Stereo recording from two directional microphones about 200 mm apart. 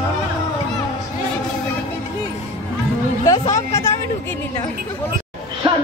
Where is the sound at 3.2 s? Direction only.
15° left (ahead or behind).